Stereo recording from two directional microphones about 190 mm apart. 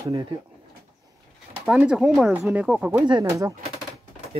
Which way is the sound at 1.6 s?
5° right (ahead or behind).